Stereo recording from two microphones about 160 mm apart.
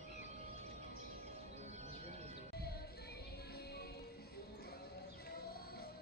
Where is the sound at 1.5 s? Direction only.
45° right (ahead or behind).